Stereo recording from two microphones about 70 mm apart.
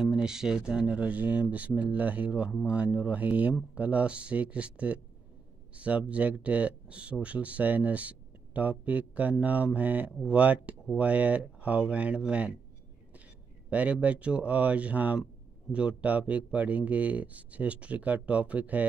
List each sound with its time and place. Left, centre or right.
0.0 s speech: centre
13.7 s speech: centre